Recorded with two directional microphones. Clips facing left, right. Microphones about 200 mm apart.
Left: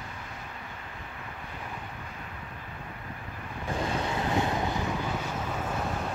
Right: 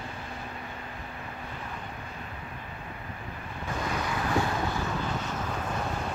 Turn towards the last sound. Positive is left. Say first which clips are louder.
# even
turn(degrees=20)  # may be behind; listen again after turning